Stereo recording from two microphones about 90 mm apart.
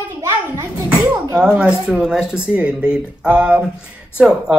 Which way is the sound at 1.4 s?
10° right (ahead or behind).